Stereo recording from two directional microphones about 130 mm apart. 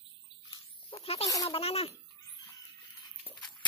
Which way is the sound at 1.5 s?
50° left (ahead or behind).